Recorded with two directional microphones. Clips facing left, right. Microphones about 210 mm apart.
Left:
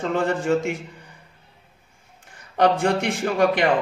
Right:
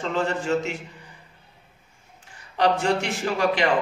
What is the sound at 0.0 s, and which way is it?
Speech, 55° left (ahead or behind).